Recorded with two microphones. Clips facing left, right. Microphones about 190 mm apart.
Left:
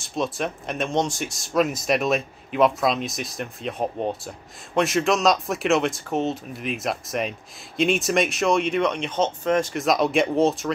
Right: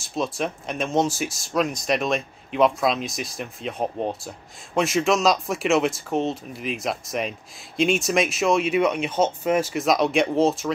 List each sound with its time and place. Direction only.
0.0 s speech: centre (ahead or behind)